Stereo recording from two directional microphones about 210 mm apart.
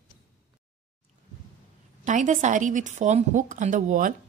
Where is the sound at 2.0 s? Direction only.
35° right (ahead or behind).